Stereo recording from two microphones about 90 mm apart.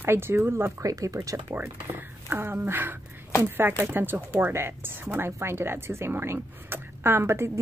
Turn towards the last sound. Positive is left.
turn(degrees=-30)  # may be behind; listen again after turning